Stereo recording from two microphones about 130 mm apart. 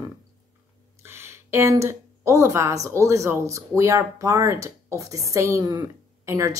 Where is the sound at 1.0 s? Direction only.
20° right (ahead or behind).